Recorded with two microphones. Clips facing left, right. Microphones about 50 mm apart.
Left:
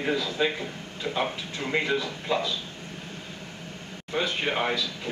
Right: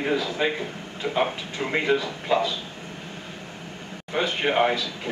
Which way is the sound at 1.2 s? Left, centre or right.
Right.